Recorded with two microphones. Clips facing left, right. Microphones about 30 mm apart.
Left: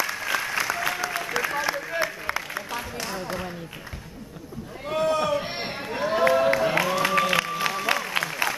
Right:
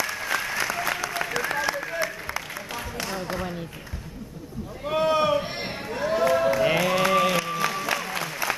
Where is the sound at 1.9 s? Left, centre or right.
Centre.